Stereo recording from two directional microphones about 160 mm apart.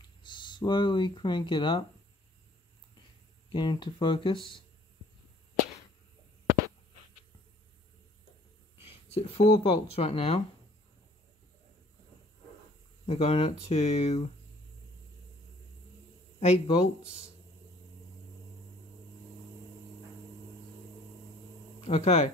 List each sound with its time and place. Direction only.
0.2 s speech: 30° left (ahead or behind)
3.4 s speech: 30° left (ahead or behind)
8.8 s speech: 40° left (ahead or behind)
13.0 s speech: 40° left (ahead or behind)
16.3 s speech: 40° left (ahead or behind)
21.8 s speech: 40° left (ahead or behind)